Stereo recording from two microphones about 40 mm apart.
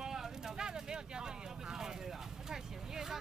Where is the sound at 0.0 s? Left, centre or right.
Centre.